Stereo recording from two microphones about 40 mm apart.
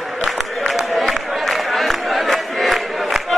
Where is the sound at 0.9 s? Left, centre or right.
Centre.